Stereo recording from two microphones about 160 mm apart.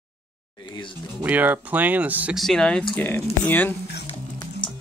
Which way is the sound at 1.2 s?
10° right (ahead or behind).